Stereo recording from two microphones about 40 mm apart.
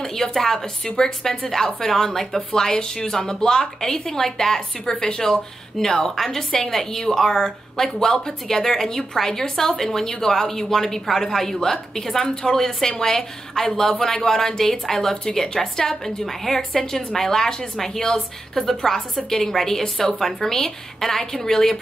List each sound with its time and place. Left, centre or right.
0.0 s speech: centre